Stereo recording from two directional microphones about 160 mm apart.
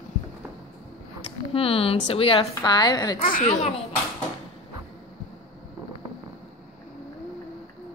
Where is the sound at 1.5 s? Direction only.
35° left (ahead or behind).